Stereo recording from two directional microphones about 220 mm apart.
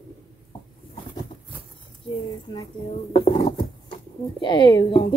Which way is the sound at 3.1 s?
25° left (ahead or behind).